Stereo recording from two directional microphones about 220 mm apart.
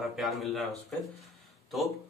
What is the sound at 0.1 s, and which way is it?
Speech, centre (ahead or behind).